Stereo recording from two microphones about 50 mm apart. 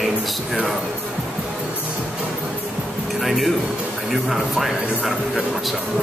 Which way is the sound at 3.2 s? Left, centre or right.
Centre.